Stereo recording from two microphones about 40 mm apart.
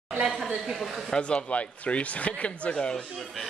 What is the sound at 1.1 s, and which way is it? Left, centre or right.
Speech, centre.